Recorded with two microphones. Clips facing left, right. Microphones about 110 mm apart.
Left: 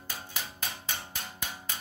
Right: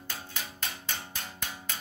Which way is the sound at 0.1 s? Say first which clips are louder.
Even; 10° left (ahead or behind).